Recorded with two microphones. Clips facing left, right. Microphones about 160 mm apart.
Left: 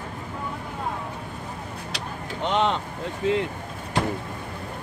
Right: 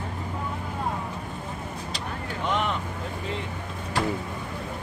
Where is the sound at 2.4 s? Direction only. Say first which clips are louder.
Left 4 dB; 80° left.